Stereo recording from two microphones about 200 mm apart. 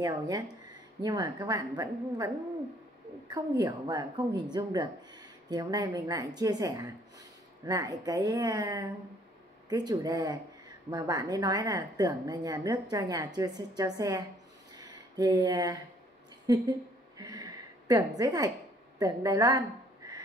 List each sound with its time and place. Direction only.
0.0 s a woman's voice: 20° right (ahead or behind)
17.2 s a sound: 15° right (ahead or behind)
18.9 s a woman's voice: 20° right (ahead or behind)